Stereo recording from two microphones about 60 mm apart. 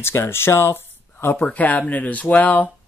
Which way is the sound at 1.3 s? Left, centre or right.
Left.